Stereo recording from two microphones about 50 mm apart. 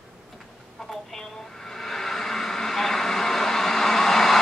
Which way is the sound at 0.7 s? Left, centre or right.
Centre.